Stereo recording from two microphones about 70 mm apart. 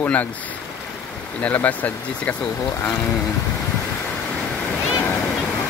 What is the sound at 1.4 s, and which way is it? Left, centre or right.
Speech, left.